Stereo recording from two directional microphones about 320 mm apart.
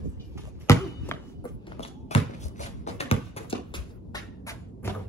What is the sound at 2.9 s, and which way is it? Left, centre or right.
Music, centre.